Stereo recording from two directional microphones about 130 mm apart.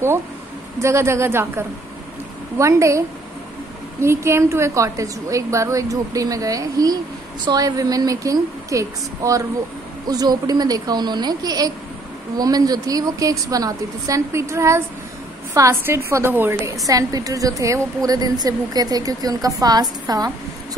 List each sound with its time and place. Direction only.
0.7 s a woman's voice: 20° right (ahead or behind)
2.5 s a woman's voice: 25° right (ahead or behind)
4.0 s a woman's voice: 20° right (ahead or behind)
16.8 s a woman's voice: 25° right (ahead or behind)